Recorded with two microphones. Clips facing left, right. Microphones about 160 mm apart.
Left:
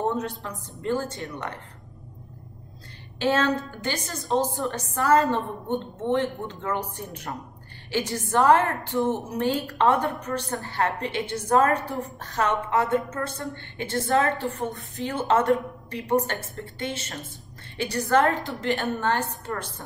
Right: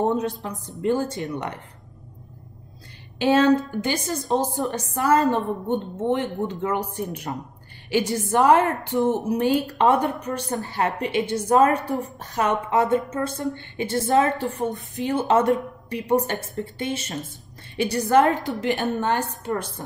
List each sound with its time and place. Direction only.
0.2 s a woman's voice: 15° right (ahead or behind)
3.2 s a woman's voice: 15° right (ahead or behind)